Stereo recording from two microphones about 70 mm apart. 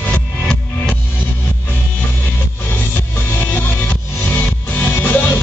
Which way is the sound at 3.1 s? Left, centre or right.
Left.